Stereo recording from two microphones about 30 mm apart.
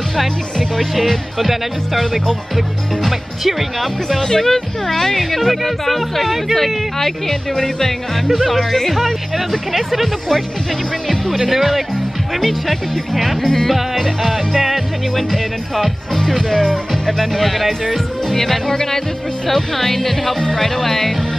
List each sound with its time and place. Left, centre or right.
0.1 s speech: centre
4.2 s speech: centre
13.4 s speech: centre
14.0 s speech: centre